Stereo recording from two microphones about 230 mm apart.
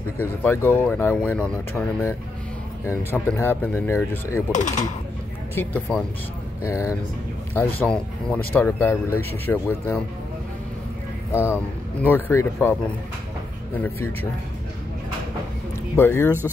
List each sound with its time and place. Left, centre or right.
0.2 s speech: centre
4.5 s speech: left
5.5 s speech: centre
12.0 s speech: centre
13.7 s speech: centre
16.0 s speech: centre